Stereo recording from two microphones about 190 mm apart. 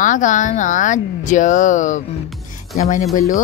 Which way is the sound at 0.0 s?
40° left (ahead or behind).